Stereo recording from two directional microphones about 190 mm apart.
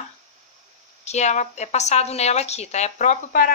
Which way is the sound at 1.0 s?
35° left (ahead or behind).